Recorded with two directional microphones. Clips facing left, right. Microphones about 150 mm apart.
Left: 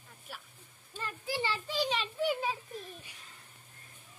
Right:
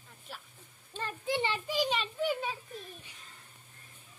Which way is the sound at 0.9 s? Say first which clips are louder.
Right 4 dB; 25° right (ahead or behind).